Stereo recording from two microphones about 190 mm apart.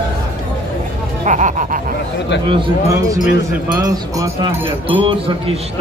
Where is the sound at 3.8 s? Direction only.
15° right (ahead or behind).